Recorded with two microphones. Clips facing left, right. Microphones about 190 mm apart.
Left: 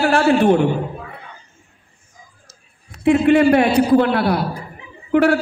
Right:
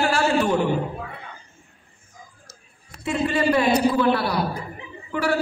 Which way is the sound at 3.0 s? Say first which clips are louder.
Left 10 dB; 60° left (ahead or behind).